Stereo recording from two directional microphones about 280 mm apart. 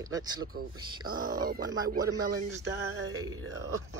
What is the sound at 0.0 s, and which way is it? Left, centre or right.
Speech, centre.